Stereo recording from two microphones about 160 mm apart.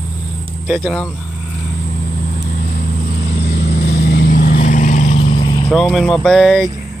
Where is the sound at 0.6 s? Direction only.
10° right (ahead or behind).